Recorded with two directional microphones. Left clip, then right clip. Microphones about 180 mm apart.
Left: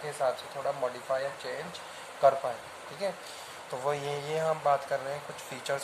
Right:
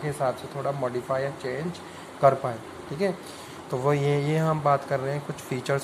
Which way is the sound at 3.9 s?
25° right (ahead or behind).